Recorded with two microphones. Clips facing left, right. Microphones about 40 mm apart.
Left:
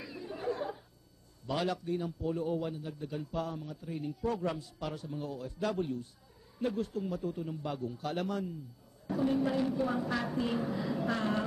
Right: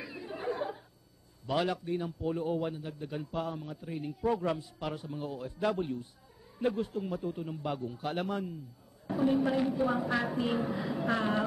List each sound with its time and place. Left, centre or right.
0.0 s chuckle: centre
1.5 s a man's voice: centre